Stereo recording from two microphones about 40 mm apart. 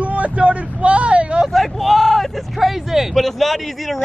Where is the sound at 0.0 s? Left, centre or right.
Right.